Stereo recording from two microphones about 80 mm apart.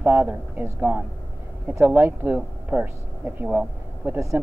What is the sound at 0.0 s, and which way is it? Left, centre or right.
Speech, centre.